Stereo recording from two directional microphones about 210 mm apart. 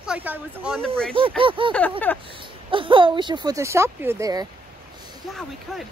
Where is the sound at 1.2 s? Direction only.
25° right (ahead or behind).